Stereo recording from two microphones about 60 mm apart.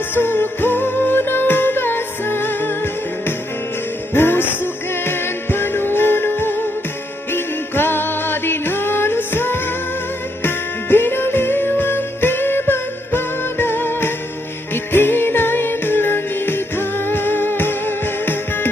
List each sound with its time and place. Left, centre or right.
0.1 s music: left